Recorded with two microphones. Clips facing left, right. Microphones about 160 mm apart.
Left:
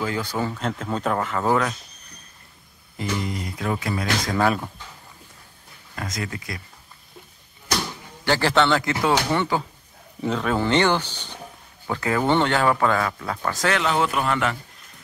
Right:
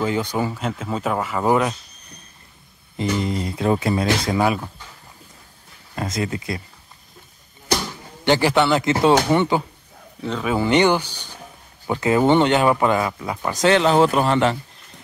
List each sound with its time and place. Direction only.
0.0 s speech: 20° right (ahead or behind)
3.0 s speech: 25° right (ahead or behind)
5.9 s speech: 25° right (ahead or behind)
8.3 s speech: 15° right (ahead or behind)
10.3 s speech: 10° right (ahead or behind); by 14.6 s 30° right (ahead or behind)